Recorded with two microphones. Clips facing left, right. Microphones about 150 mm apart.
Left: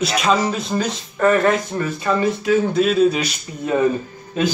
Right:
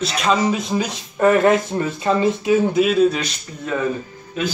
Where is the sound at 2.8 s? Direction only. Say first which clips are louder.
Even; centre (ahead or behind).